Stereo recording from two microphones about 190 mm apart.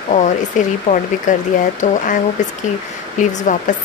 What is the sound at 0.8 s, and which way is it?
Speech, 40° left (ahead or behind).